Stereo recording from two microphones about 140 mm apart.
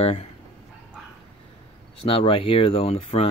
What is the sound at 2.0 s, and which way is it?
Speech, 40° left (ahead or behind).